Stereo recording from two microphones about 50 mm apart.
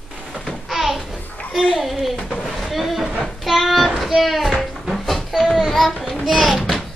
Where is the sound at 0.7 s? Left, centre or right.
Centre.